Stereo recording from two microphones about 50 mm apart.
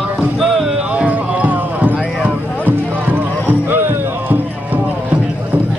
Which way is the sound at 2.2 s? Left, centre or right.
Right.